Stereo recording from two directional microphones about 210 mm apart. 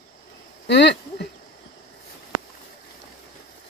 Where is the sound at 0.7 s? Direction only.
55° left (ahead or behind).